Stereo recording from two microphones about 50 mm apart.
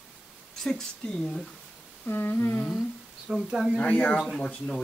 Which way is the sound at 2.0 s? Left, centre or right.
Left.